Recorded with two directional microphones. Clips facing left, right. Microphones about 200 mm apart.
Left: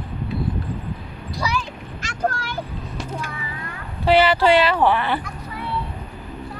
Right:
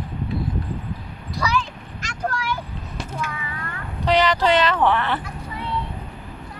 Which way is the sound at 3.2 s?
35° left (ahead or behind).